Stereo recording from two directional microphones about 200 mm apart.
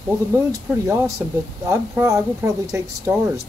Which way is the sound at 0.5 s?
15° right (ahead or behind).